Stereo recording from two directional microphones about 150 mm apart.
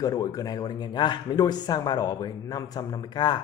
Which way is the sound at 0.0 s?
25° left (ahead or behind).